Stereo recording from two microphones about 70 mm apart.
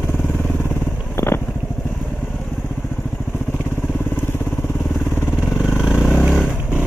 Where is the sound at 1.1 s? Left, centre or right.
Left.